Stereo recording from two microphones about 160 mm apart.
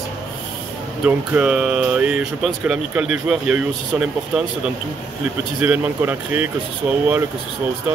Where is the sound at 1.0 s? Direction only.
5° right (ahead or behind).